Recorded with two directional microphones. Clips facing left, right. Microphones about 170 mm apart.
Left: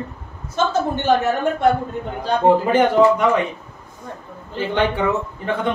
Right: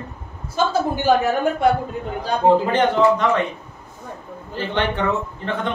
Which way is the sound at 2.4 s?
10° left (ahead or behind).